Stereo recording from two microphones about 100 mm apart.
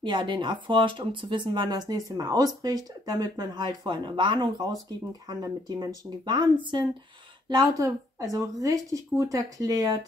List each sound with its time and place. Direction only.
0.0 s speech: 50° right (ahead or behind)
7.4 s speech: 40° right (ahead or behind)